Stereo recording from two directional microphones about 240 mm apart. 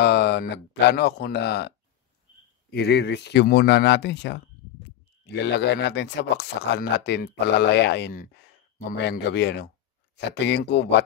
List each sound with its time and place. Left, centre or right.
0.0 s speech: left
2.7 s speech: left